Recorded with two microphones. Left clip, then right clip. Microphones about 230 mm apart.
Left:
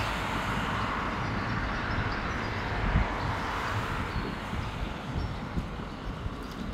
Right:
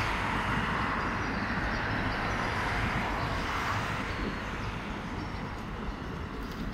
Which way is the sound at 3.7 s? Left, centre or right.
Left.